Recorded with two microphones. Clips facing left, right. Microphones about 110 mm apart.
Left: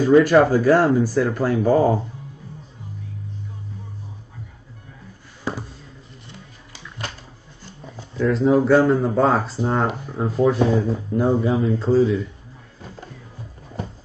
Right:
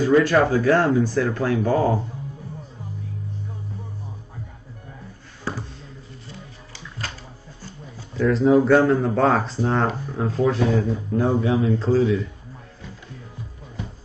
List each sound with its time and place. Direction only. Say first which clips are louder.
0.0 s speech: left 3 dB; 15° left (ahead or behind)
8.2 s speech: right 1 dB; centre (ahead or behind)
13.8 s music: left 3 dB; 40° left (ahead or behind)